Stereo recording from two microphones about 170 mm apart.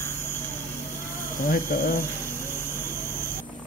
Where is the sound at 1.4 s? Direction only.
55° left (ahead or behind).